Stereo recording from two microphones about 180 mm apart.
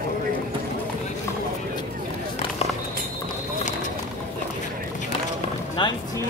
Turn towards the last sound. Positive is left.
turn(degrees=25)  # may be behind; listen again after turning